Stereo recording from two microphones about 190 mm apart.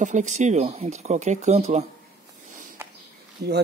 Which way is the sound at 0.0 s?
40° right (ahead or behind).